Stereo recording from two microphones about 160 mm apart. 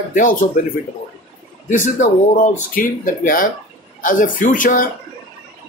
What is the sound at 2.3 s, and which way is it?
A man's voice, 60° left (ahead or behind).